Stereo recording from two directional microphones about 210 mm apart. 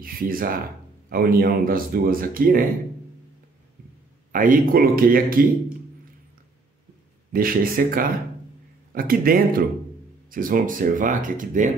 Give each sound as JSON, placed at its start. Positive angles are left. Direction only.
{"t": 0.0, "sound": "speech", "side_deg": -45}
{"t": 4.3, "sound": "speech", "side_deg": -40}
{"t": 7.3, "sound": "speech", "side_deg": -45}